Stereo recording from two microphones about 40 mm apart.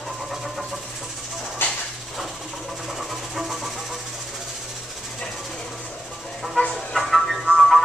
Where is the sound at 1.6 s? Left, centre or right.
Left.